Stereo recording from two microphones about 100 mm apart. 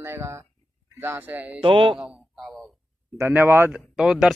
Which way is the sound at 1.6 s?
55° right (ahead or behind).